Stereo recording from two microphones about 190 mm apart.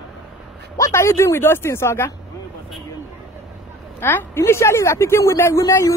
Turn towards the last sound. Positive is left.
turn(degrees=15)  # may be behind; listen again after turning